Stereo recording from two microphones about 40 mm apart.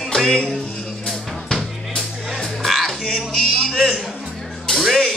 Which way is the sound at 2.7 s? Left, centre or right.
Centre.